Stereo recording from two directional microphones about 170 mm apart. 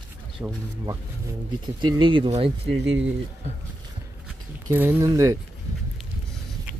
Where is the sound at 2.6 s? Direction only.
90° right.